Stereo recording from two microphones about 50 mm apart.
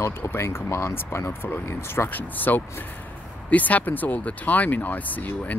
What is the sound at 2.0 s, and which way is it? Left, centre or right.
Speech, left.